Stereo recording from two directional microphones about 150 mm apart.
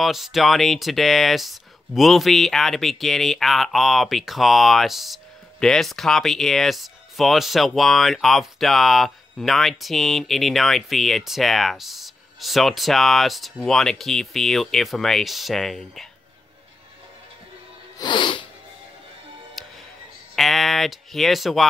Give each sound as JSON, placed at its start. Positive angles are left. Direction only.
{"t": 0.0, "sound": "speech", "side_deg": 0}
{"t": 17.9, "sound": "sneeze", "side_deg": 30}
{"t": 19.6, "sound": "music", "side_deg": 0}
{"t": 20.3, "sound": "speech", "side_deg": 0}